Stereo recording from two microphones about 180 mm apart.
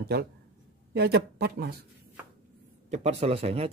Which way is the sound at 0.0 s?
60° right (ahead or behind).